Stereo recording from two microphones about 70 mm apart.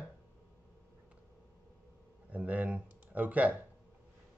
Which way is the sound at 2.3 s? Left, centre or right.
Right.